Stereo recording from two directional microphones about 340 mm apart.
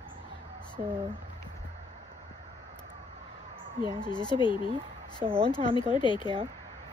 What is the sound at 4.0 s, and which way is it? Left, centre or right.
Speech, centre.